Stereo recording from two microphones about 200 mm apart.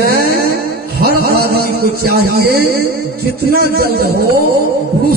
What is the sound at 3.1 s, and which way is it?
Music, 50° right (ahead or behind).